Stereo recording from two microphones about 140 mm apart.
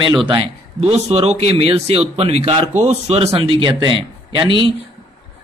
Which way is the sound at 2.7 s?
55° right (ahead or behind).